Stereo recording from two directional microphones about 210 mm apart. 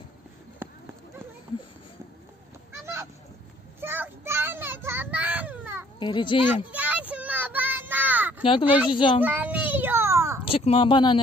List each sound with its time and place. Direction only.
2.8 s honk: 10° right (ahead or behind)
3.8 s children playing: 10° right (ahead or behind)
5.9 s a child's voice: 20° left (ahead or behind)
6.4 s child singing: 10° right (ahead or behind)
8.6 s speech: 5° right (ahead or behind)
8.9 s a child's voice: 25° left (ahead or behind)
9.2 s child singing: 10° right (ahead or behind)
10.4 s speech: 25° left (ahead or behind)